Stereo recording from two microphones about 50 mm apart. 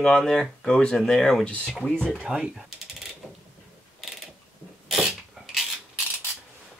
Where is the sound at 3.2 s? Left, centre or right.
Left.